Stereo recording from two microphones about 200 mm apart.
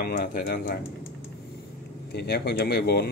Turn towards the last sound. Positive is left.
turn(degrees=50)  # may be behind; listen again after turning